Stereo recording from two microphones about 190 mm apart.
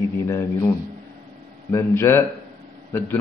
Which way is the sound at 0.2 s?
15° left (ahead or behind).